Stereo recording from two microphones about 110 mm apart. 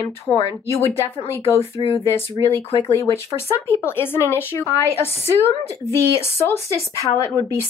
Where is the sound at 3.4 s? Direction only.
20° left (ahead or behind).